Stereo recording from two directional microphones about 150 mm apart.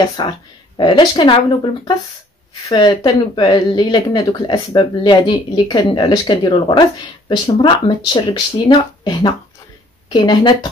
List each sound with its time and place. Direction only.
0.2 s speech: 30° left (ahead or behind)
2.6 s speech: 25° left (ahead or behind)